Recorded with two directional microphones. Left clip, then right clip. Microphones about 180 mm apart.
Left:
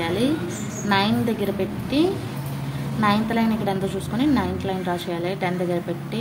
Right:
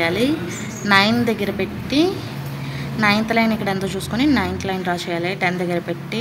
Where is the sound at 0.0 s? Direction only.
15° right (ahead or behind).